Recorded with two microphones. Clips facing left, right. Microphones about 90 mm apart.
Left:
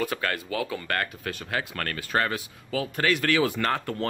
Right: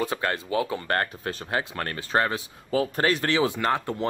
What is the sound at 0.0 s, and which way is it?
Speech, 25° right (ahead or behind).